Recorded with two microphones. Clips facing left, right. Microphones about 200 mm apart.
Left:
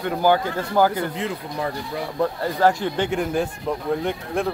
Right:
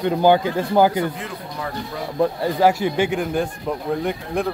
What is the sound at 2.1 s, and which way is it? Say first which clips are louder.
Speech: right 4 dB; 15° right (ahead or behind).